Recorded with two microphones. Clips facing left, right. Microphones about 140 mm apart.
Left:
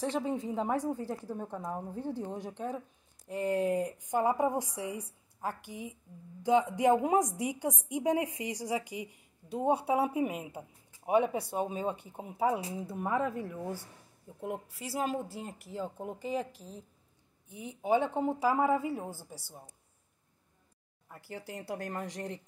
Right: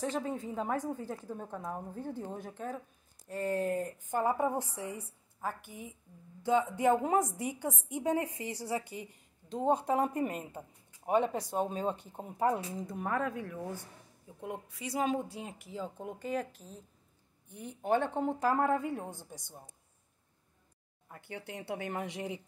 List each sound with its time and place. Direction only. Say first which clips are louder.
0.2 s a woman's voice: left 3 dB; 15° left (ahead or behind)
14.9 s a woman's voice: right 1 dB; 5° left (ahead or behind)
21.1 s speech: left 1 dB; centre (ahead or behind)